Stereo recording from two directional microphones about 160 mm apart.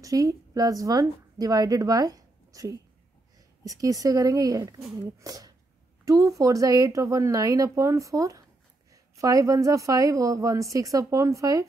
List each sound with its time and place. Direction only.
0.0 s a woman's voice: 20° right (ahead or behind)